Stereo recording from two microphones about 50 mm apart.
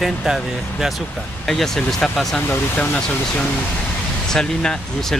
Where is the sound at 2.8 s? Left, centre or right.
Left.